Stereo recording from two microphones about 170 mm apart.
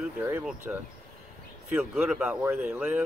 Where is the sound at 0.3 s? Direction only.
10° right (ahead or behind).